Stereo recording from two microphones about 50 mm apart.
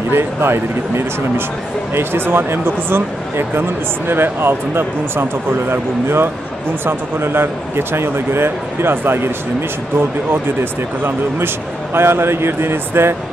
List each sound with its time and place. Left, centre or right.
0.1 s speech: right